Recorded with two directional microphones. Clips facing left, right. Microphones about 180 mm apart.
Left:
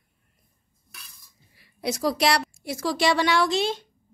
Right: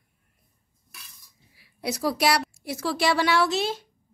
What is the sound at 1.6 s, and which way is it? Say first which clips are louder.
A woman's voice: left 2 dB; 5° right (ahead or behind).